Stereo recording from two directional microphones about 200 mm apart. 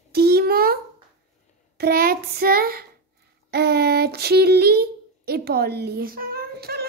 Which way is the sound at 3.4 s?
55° right (ahead or behind).